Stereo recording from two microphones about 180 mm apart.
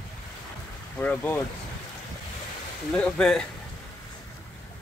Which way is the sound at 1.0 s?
10° left (ahead or behind).